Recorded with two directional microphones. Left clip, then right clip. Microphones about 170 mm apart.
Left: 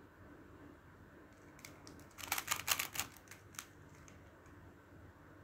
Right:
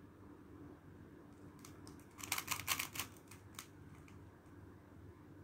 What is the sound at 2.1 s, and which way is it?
Typewriter, 25° left (ahead or behind).